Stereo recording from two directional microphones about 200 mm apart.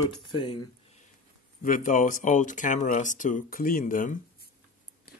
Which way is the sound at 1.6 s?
45° left (ahead or behind).